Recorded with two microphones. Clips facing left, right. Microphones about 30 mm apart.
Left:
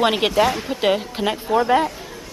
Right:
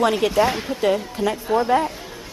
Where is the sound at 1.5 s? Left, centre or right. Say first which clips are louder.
Left 2 dB; left.